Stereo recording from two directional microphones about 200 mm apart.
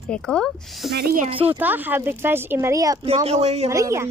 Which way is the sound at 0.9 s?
50° right (ahead or behind).